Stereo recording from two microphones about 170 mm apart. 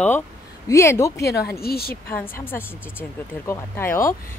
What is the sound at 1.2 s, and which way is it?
Speech, 70° left (ahead or behind).